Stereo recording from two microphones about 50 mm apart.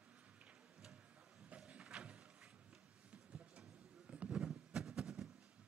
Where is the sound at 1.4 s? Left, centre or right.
Right.